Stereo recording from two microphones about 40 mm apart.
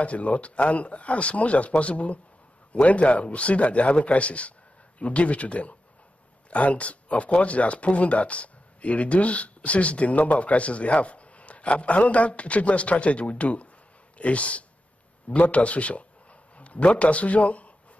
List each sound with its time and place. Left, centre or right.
0.0 s a man's voice: left